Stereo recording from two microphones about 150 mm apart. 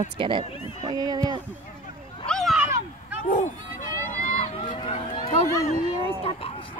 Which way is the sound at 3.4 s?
60° left (ahead or behind).